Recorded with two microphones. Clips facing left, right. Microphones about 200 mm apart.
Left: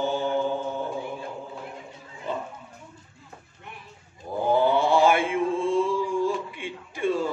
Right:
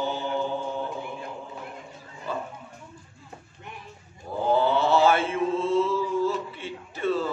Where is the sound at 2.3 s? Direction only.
20° left (ahead or behind).